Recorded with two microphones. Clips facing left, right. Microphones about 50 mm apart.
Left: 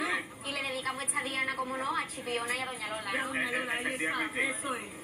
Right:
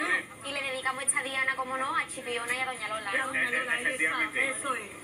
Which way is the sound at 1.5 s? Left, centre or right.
Right.